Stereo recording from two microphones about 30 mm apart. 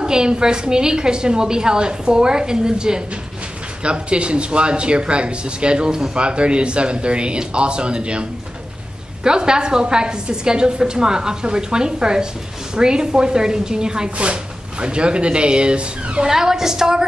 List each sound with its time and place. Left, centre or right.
0.0 s a woman's voice: right
5.9 s a woman's voice: right
6.1 s a woman's voice: right
16.3 s a woman's voice: centre